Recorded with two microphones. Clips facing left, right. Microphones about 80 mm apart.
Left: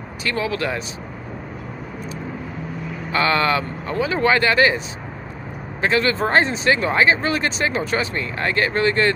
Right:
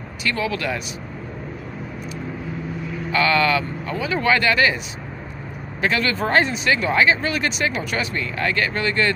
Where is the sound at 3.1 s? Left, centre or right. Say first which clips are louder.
Even; left.